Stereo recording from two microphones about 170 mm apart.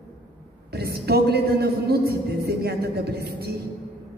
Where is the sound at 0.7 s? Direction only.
70° right (ahead or behind).